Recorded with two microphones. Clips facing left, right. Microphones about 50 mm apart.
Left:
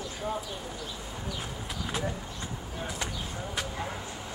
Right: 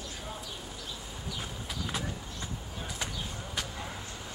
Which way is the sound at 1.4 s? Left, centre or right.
Centre.